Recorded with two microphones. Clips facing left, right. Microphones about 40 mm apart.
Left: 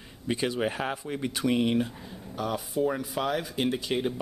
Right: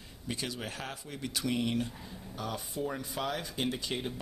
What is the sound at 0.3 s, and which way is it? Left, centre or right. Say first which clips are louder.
Speech: left 10 dB; left.